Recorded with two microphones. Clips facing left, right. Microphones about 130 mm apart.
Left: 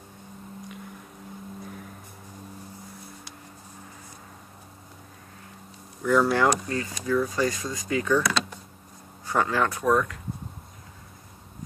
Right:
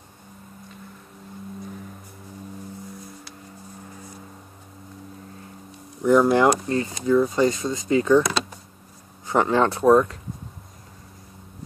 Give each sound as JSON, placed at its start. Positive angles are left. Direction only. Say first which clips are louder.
{"t": 6.0, "sound": "speech", "louder": "right 5 dB", "side_deg": -20}